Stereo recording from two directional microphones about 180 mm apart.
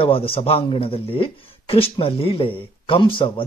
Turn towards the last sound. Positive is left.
turn(degrees=30)  # may be behind; listen again after turning